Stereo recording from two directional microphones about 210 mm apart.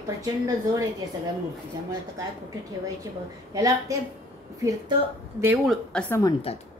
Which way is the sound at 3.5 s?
15° right (ahead or behind).